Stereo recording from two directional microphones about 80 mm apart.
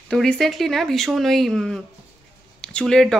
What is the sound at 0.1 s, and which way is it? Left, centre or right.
Speech, centre.